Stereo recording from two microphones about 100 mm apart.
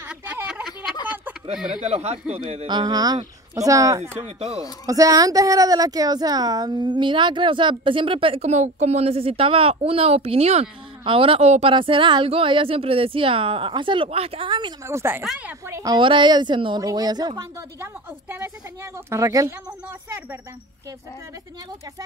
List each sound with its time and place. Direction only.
0.1 s a sound: 15° right (ahead or behind)
1.8 s speech: 90° right
2.7 s speech: 45° right (ahead or behind)
4.4 s speech: 90° right
4.8 s a woman's voice: 35° right (ahead or behind); by 11.7 s 75° right (ahead or behind)
11.7 s a woman's voice: 60° right (ahead or behind)
14.0 s speech: 80° right
14.9 s speech: 25° right (ahead or behind)
16.0 s speech: 55° right (ahead or behind)
19.0 s speech: 30° right (ahead or behind)